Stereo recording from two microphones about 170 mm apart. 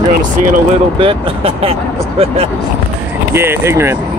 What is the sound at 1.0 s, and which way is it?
Speech, 35° right (ahead or behind).